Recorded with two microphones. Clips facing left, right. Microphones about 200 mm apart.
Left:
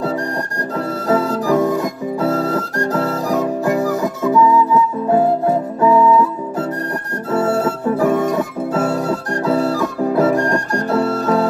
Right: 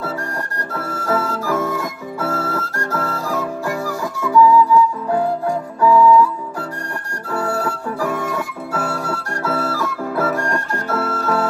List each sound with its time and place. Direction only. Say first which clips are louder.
0.7 s music: left 4 dB; 15° left (ahead or behind)
7.2 s music: left 5 dB; 20° left (ahead or behind)